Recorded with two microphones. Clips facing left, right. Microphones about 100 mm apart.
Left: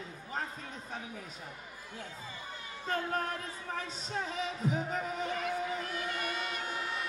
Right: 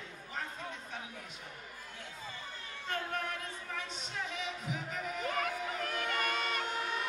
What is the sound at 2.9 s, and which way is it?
Speech, 35° left (ahead or behind).